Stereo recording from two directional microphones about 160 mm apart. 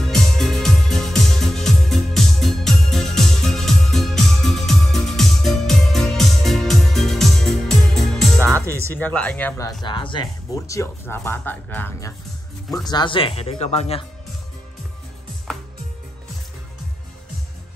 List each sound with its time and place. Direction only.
0.0 s music: centre (ahead or behind)
8.6 s music: 15° right (ahead or behind)
8.9 s speech: 10° left (ahead or behind)
9.8 s speech: 30° left (ahead or behind); by 12.1 s 10° left (ahead or behind)
12.7 s speech: 25° left (ahead or behind)
15.5 s music: centre (ahead or behind)